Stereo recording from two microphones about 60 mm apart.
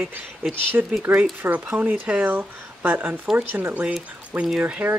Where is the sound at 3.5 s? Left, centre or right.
Right.